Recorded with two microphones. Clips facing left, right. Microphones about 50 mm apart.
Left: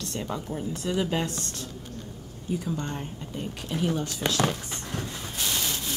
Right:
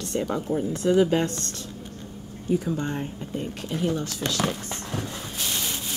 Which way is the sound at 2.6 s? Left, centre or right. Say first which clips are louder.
Right 4 dB; centre.